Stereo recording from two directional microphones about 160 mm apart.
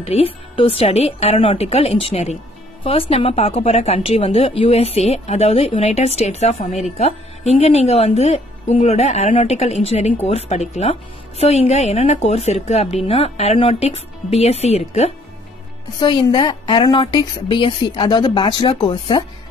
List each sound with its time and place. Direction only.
0.1 s a woman's voice: 35° left (ahead or behind)
16.0 s a woman's voice: 30° left (ahead or behind)